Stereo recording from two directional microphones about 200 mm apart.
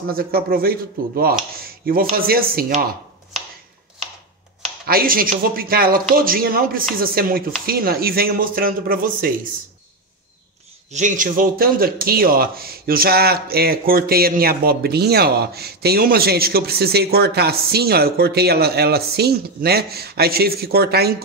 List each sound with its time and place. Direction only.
0.1 s speech: 50° right (ahead or behind)
4.8 s speech: 45° right (ahead or behind)
10.9 s speech: 40° right (ahead or behind)